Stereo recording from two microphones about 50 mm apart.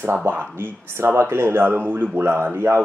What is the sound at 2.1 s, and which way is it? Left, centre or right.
Speech, right.